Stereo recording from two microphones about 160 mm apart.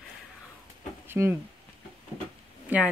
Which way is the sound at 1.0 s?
15° right (ahead or behind).